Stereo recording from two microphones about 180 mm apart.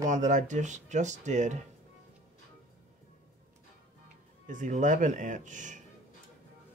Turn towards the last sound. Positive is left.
turn(degrees=-45)  # may be behind; listen again after turning